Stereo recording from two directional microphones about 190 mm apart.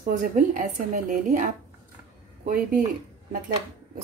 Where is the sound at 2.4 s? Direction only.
45° right (ahead or behind).